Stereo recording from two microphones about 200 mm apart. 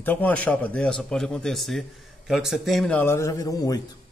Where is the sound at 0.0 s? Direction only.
10° left (ahead or behind).